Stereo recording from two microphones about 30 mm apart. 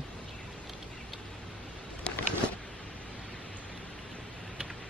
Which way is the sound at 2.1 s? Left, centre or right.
Left.